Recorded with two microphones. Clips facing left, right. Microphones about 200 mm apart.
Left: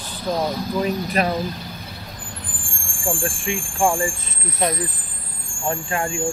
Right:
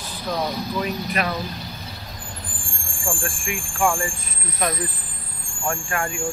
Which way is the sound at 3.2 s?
25° left (ahead or behind).